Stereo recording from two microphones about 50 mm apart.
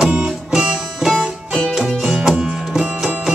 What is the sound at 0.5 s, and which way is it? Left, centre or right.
Music, centre.